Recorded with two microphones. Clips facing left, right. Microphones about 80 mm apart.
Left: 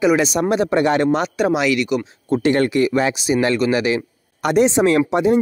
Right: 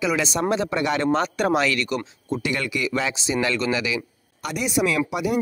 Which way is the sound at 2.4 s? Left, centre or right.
Left.